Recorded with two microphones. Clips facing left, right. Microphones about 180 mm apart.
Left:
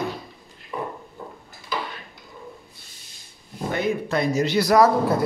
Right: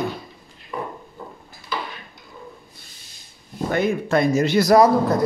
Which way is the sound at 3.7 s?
50° right (ahead or behind).